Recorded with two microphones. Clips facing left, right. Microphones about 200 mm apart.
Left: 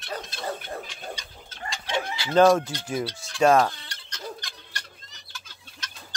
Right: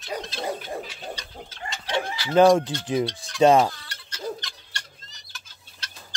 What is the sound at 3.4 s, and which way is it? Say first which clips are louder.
Speech: right 2 dB; 15° right (ahead or behind).